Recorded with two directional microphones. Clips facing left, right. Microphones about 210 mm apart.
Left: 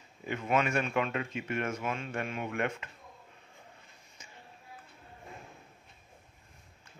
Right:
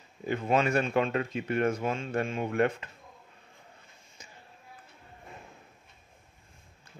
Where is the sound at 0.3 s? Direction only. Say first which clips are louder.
Right 4 dB; 35° right (ahead or behind).